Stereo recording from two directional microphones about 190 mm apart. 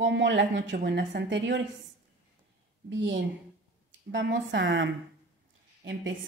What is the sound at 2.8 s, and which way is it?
A woman's voice, 70° right (ahead or behind).